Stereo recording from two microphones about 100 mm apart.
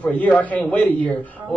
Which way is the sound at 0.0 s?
15° left (ahead or behind).